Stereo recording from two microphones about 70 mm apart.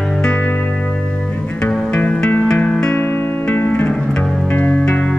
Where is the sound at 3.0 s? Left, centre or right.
Left.